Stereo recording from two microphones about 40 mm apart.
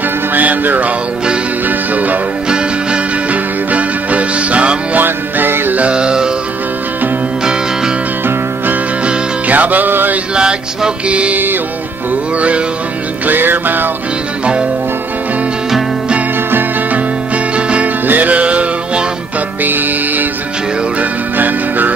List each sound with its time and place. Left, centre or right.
0.3 s music: right
2.4 s music: right
3.3 s music: right
4.9 s music: right
5.8 s music: right
9.5 s music: right
10.3 s music: right
11.1 s music: right
12.4 s music: right
13.3 s music: right
14.4 s music: right
17.6 s music: right
18.0 s music: right
19.6 s music: right